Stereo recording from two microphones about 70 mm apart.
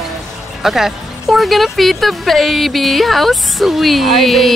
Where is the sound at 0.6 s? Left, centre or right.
Centre.